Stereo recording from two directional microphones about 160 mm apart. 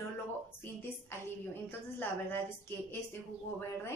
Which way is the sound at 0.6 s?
15° left (ahead or behind).